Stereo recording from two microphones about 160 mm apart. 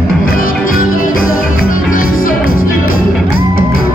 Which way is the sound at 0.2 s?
60° left (ahead or behind).